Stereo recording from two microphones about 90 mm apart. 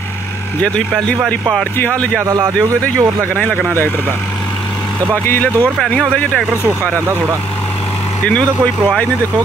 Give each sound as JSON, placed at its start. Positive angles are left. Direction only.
{"t": 2.4, "sound": "speech", "side_deg": -30}
{"t": 5.2, "sound": "speech", "side_deg": 25}
{"t": 6.8, "sound": "speech", "side_deg": -25}